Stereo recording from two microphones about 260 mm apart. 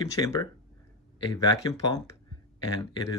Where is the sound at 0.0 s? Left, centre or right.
Centre.